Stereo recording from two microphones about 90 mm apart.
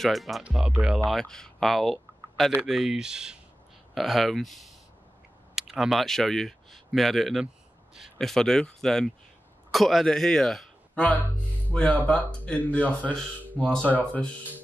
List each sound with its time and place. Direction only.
0.0 s speech: centre (ahead or behind)
1.0 s speech: 5° left (ahead or behind)
11.7 s speech: 15° left (ahead or behind)
13.6 s speech: 5° left (ahead or behind)
13.8 s speech: 15° left (ahead or behind)